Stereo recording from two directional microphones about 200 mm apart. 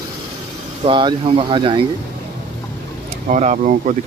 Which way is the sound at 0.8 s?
25° right (ahead or behind).